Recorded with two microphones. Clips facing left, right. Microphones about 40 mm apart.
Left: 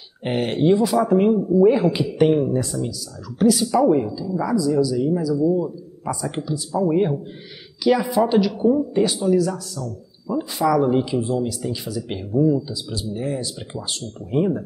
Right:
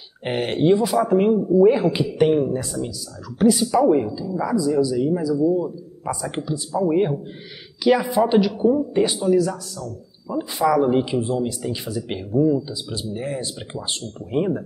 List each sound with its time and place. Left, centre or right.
0.2 s speech: centre
4.6 s speech: centre
11.1 s speech: right
12.3 s speech: centre